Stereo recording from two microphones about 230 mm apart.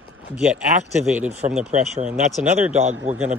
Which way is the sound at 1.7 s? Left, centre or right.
Right.